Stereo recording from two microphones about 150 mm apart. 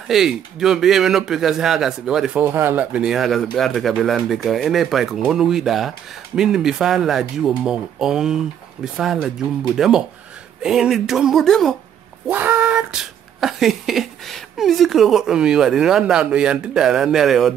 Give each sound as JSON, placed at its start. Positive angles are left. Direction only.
{"t": 0.1, "sound": "a man's voice", "side_deg": 0}
{"t": 12.3, "sound": "a man's voice", "side_deg": -10}